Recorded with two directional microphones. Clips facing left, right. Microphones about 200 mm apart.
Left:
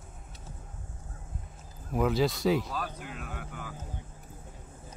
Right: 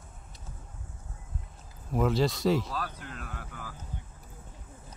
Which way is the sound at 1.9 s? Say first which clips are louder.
Even; centre (ahead or behind).